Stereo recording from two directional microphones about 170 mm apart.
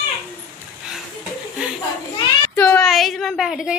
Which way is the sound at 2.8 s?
Centre (ahead or behind).